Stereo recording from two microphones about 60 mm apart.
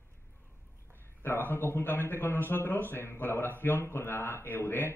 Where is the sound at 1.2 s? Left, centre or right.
Left.